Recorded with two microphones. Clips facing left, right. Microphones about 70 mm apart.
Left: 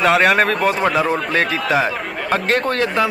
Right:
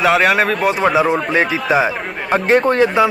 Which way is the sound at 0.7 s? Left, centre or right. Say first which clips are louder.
Right 3 dB; centre.